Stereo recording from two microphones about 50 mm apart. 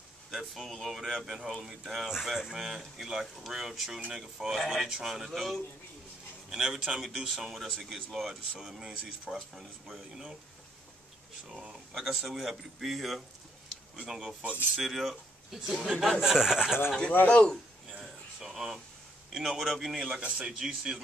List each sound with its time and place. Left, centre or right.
0.3 s speech: centre
8.8 s speech: centre
12.1 s speech: centre
16.2 s speech: centre
17.3 s a man's voice: centre
18.0 s a sound: centre
19.3 s speech: centre
20.1 s speech: centre